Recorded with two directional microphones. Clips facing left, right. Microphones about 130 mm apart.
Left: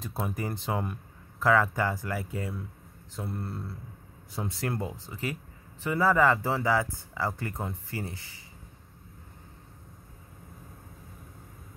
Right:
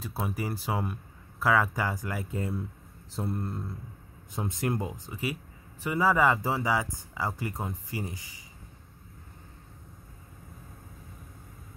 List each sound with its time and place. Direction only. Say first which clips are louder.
0.0 s speech: even; 5° right (ahead or behind)